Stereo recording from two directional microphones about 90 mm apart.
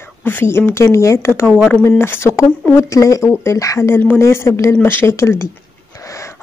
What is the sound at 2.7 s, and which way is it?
Speech, 35° left (ahead or behind).